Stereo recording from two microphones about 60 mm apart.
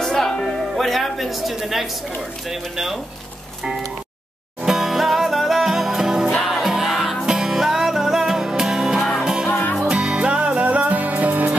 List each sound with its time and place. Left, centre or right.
0.0 s music: centre
2.5 s speech: centre
4.6 s music: centre
9.5 s music: left
9.8 s music: centre